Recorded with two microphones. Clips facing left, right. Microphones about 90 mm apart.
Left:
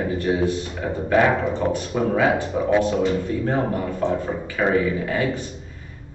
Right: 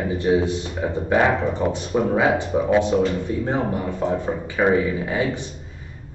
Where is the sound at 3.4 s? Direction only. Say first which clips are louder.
Left 1 dB; 20° right (ahead or behind).